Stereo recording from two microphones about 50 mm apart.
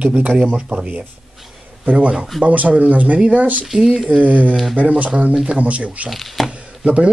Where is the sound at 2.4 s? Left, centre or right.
Right.